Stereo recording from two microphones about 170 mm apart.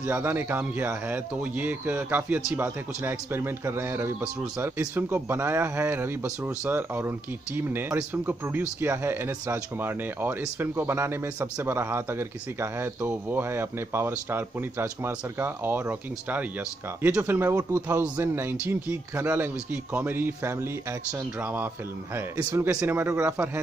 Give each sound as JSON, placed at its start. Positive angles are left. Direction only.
{"t": 0.0, "sound": "speech", "side_deg": -15}